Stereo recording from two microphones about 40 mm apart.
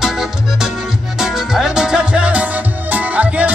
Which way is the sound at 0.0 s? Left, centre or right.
Centre.